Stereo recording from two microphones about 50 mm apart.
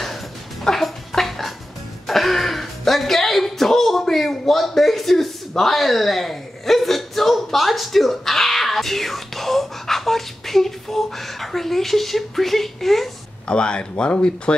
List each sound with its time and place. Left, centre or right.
0.0 s music: centre
2.0 s a sound: centre
5.6 s speech: centre
13.5 s speech: left